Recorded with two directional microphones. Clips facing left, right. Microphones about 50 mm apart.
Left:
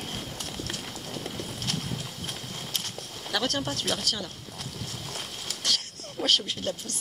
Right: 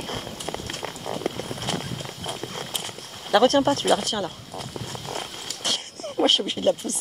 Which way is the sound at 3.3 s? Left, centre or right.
Right.